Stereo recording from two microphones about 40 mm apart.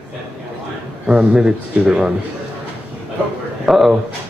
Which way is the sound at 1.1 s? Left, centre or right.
Right.